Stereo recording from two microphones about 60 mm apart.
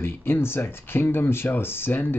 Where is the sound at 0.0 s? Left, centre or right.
Left.